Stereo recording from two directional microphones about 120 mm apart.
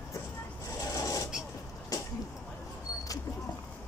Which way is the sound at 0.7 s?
30° left (ahead or behind).